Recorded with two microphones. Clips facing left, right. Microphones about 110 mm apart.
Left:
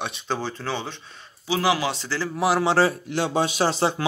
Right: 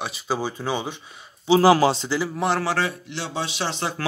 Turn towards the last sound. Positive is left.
turn(degrees=40)  # may be behind; listen again after turning